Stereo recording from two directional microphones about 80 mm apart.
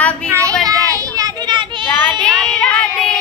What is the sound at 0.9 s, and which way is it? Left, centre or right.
Children playing, right.